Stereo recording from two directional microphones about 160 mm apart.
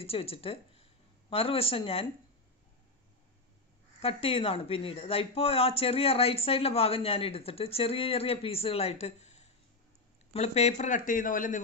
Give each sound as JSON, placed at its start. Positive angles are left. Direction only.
{"t": 0.0, "sound": "speech", "side_deg": 35}
{"t": 4.0, "sound": "speech", "side_deg": 40}